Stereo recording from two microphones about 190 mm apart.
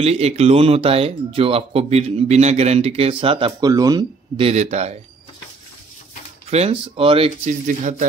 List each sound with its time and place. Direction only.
0.0 s speech: 35° right (ahead or behind)
4.5 s speech: 35° right (ahead or behind)
6.5 s speech: 30° right (ahead or behind)
7.6 s speech: 40° right (ahead or behind)